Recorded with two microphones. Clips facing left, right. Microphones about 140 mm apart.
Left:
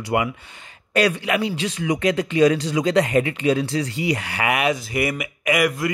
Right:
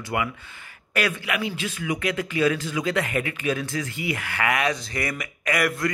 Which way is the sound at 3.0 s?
25° left (ahead or behind).